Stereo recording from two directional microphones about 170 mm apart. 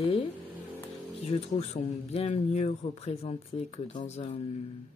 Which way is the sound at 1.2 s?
40° left (ahead or behind).